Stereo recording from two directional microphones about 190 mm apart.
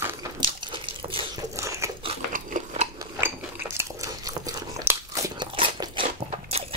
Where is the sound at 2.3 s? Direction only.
45° right (ahead or behind).